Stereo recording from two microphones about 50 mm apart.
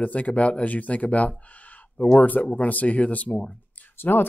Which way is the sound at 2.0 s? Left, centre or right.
Centre.